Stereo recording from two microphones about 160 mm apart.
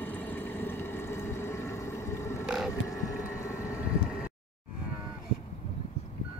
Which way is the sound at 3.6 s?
10° right (ahead or behind).